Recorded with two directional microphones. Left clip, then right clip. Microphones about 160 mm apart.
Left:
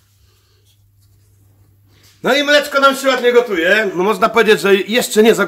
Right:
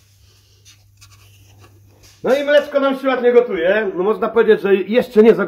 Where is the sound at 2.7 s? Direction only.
15° left (ahead or behind).